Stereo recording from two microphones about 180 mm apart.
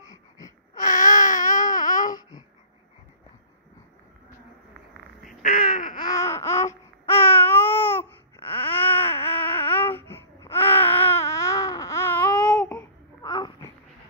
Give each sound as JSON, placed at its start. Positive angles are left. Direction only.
{"t": 0.7, "sound": "baby cry", "side_deg": 45}
{"t": 5.4, "sound": "a sound", "side_deg": 50}
{"t": 6.1, "sound": "babbling", "side_deg": 15}
{"t": 8.6, "sound": "baby cry", "side_deg": 10}
{"t": 13.2, "sound": "babbling", "side_deg": 25}